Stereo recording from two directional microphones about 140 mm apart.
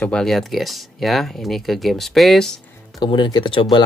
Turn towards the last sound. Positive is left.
turn(degrees=35)  # may be behind; listen again after turning